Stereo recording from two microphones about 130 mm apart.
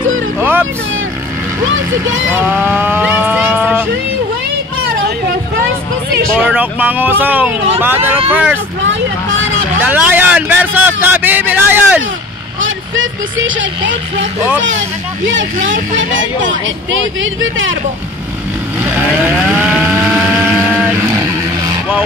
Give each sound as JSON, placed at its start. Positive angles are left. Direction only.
{"t": 0.4, "sound": "vehicle", "side_deg": -15}
{"t": 2.4, "sound": "vehicle", "side_deg": -10}
{"t": 6.3, "sound": "a man's voice", "side_deg": -10}
{"t": 9.8, "sound": "a man's voice", "side_deg": -15}
{"t": 19.5, "sound": "vehicle", "side_deg": -5}